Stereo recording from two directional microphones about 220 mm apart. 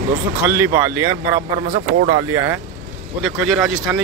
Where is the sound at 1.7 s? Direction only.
35° right (ahead or behind).